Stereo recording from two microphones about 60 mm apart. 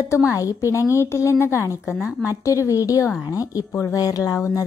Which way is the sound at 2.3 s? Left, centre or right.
Left.